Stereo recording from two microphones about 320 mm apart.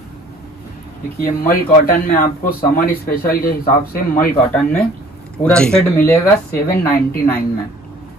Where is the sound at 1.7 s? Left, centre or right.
Left.